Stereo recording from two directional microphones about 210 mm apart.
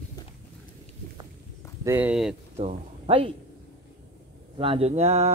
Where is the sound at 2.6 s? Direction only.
30° right (ahead or behind).